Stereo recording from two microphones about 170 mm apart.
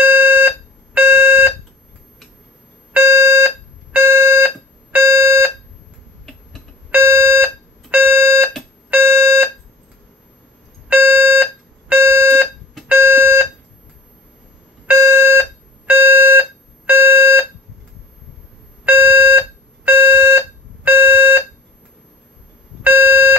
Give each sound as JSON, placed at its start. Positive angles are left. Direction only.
{"t": 0.0, "sound": "alarm", "side_deg": -10}
{"t": 2.9, "sound": "alarm", "side_deg": -15}
{"t": 6.9, "sound": "alarm", "side_deg": -15}
{"t": 10.9, "sound": "alarm", "side_deg": -10}
{"t": 12.0, "sound": "smoke detector", "side_deg": -15}
{"t": 12.3, "sound": "smoke detector", "side_deg": 0}
{"t": 14.9, "sound": "alarm", "side_deg": -15}
{"t": 18.9, "sound": "smoke detector", "side_deg": -10}
{"t": 22.8, "sound": "beep", "side_deg": -10}